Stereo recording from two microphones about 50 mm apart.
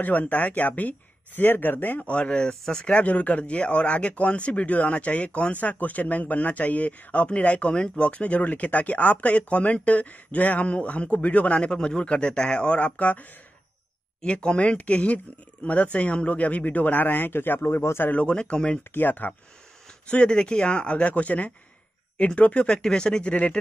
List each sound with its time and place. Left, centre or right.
0.0 s speech: left
2.0 s speech: left
14.2 s speech: centre; by 18.1 s left
18.1 s speech: left
18.9 s speech: left
20.1 s speech: centre